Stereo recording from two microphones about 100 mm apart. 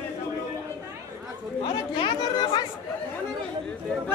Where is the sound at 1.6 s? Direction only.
55° left (ahead or behind).